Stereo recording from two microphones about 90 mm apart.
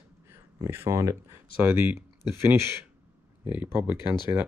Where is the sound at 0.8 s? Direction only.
35° right (ahead or behind).